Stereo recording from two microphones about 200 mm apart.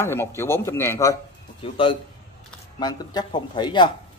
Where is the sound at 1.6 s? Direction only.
25° left (ahead or behind).